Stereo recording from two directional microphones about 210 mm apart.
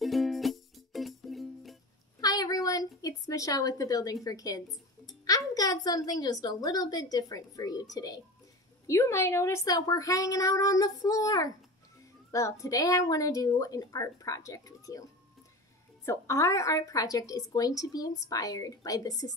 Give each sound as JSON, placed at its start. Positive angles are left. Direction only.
{"t": 0.0, "sound": "music", "side_deg": 0}
{"t": 2.1, "sound": "a woman's voice", "side_deg": 20}
{"t": 16.1, "sound": "speech", "side_deg": 15}